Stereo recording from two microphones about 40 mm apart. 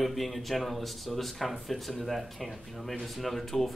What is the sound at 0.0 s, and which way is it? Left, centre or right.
Speech, centre.